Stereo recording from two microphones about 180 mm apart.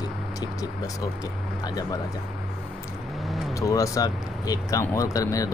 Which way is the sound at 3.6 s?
15° left (ahead or behind).